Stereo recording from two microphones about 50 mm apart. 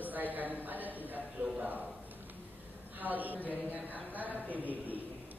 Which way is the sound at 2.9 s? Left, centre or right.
Right.